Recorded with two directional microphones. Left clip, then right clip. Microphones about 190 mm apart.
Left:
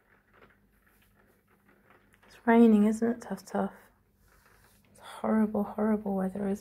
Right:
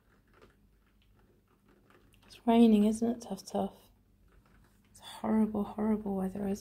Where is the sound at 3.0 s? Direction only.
5° left (ahead or behind).